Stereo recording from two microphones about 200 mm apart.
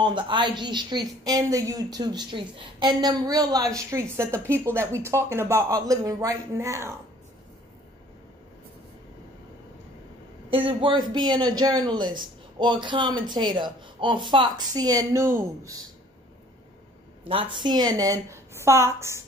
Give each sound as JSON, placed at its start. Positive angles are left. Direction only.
{"t": 0.0, "sound": "a woman's voice", "side_deg": -25}
{"t": 10.5, "sound": "a woman's voice", "side_deg": -25}
{"t": 17.3, "sound": "a woman's voice", "side_deg": -30}